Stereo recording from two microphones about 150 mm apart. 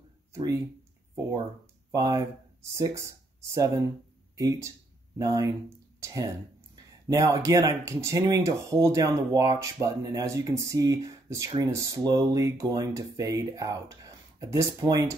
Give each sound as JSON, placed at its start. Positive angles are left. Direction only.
{"t": 1.9, "sound": "speech", "side_deg": -25}